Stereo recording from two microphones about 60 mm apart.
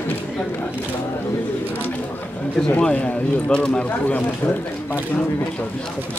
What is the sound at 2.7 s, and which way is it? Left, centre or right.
Speech, left.